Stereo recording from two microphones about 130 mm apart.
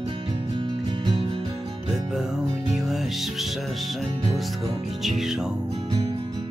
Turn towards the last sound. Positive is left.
turn(degrees=-5)  # may be behind; listen again after turning